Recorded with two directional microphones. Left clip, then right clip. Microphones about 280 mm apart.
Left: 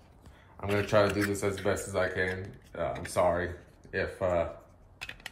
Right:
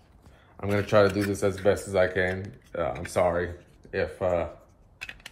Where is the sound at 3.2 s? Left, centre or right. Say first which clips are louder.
Right 1 dB; centre.